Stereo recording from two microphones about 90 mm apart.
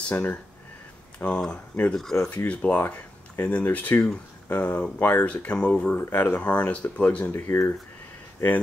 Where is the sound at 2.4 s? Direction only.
15° left (ahead or behind).